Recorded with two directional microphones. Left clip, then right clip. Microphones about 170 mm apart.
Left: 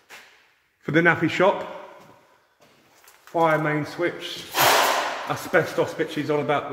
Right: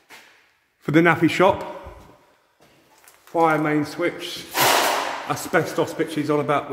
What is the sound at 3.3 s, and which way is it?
Speech, 10° right (ahead or behind).